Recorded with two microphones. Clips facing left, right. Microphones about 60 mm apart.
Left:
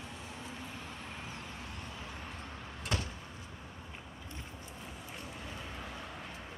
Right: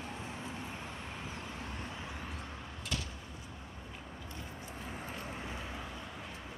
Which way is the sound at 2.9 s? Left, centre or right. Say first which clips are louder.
Left 3 dB; left.